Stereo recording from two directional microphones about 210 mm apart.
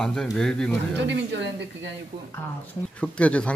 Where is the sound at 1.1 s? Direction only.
55° right (ahead or behind).